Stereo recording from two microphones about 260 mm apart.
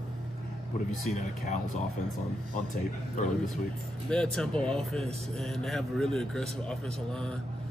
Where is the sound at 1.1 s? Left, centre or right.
Left.